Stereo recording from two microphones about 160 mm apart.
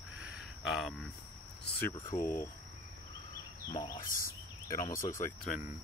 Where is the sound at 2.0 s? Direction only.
20° left (ahead or behind).